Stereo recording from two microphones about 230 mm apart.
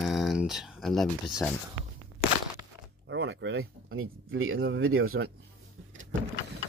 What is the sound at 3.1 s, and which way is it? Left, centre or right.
Speech, right.